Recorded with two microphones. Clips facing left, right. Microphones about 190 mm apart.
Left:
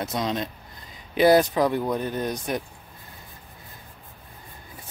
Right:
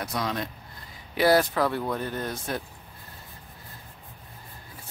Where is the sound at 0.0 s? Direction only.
20° left (ahead or behind).